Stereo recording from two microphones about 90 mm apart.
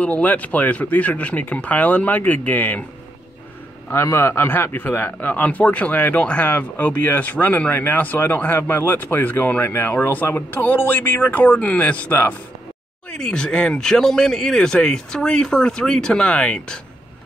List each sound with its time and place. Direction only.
0.0 s speech: 20° left (ahead or behind)
3.9 s a man's voice: 30° left (ahead or behind); by 16.8 s 10° left (ahead or behind)